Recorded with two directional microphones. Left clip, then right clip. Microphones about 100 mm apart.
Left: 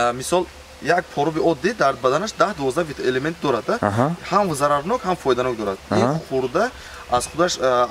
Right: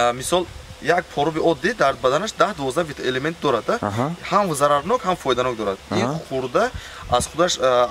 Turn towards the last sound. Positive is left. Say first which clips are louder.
# right 1 dB
turn(degrees=-10)  # may be behind; listen again after turning